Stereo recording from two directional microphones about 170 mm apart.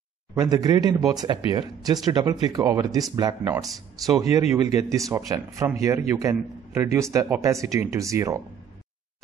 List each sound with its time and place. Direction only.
0.3 s speech: 20° right (ahead or behind)